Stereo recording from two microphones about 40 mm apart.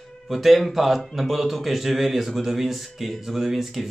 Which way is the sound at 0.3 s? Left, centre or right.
Centre.